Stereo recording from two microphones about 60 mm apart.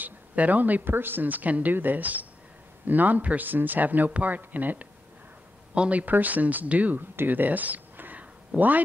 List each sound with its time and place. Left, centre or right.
0.0 s speech: right